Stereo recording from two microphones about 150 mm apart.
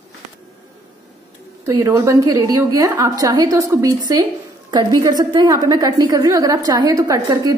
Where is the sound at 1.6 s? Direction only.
20° right (ahead or behind).